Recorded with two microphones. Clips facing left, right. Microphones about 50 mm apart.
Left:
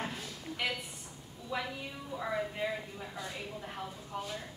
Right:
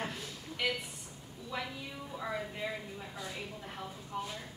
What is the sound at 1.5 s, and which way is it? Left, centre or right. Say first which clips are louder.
Speech: left 2 dB; centre.